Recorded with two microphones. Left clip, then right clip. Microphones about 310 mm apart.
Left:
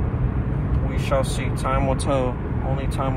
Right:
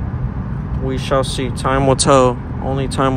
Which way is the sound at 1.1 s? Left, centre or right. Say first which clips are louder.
Right 6 dB; right.